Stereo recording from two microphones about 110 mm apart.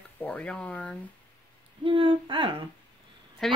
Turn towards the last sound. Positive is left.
turn(degrees=0)  # may be behind; listen again after turning